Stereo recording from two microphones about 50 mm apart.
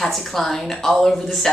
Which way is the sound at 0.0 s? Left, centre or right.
Centre.